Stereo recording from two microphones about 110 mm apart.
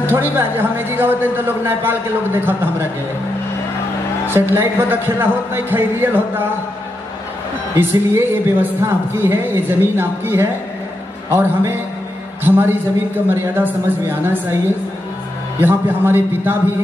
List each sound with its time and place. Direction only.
0.0 s a man's voice: 20° right (ahead or behind)
4.3 s a man's voice: 20° right (ahead or behind)
7.7 s a man's voice: 20° right (ahead or behind)
15.6 s a man's voice: 20° right (ahead or behind)